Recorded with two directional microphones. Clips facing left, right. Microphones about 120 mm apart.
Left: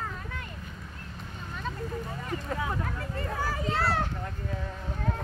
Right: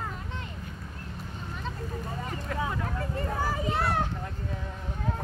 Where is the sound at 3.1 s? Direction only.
20° right (ahead or behind).